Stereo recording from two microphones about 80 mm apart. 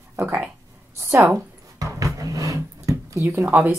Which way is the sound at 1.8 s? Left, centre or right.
Right.